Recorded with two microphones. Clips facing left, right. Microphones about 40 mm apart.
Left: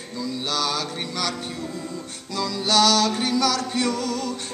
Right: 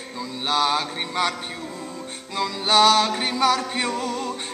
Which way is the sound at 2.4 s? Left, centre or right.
Right.